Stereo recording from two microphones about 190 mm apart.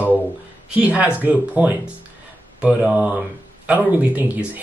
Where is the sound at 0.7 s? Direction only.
10° right (ahead or behind).